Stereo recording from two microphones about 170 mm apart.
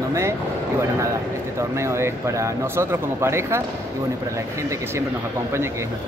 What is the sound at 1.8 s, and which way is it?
Speech, 15° right (ahead or behind).